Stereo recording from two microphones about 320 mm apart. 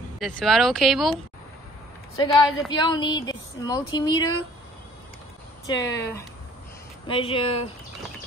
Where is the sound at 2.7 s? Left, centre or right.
Centre.